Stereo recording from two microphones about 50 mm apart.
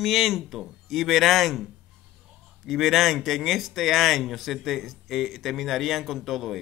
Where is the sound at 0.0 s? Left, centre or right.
Centre.